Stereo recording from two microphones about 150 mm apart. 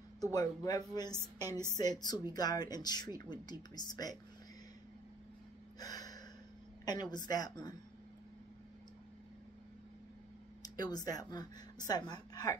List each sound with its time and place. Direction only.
0.3 s speech: 25° left (ahead or behind)
5.8 s gasp: 25° left (ahead or behind)
6.8 s speech: 25° left (ahead or behind)
10.6 s speech: 25° left (ahead or behind)